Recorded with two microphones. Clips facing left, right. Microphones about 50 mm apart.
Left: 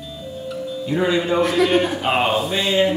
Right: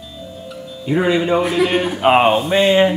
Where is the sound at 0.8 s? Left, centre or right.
Right.